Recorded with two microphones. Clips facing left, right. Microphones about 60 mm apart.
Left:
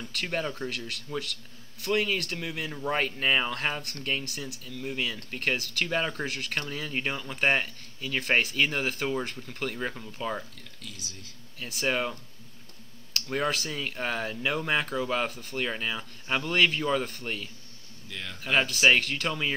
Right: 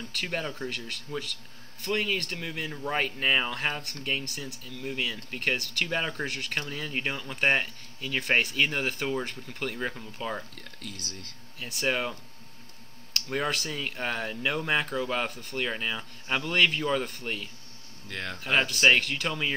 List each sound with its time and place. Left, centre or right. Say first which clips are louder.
0.1 s speech: left 2 dB; centre
10.8 s speech: right 3 dB; right
11.6 s speech: even; centre
18.0 s speech: right 4 dB; right
18.6 s speech: even; centre